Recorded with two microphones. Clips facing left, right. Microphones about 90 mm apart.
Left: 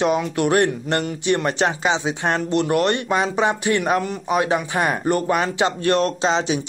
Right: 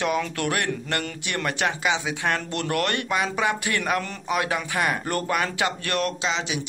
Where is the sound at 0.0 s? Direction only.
20° left (ahead or behind).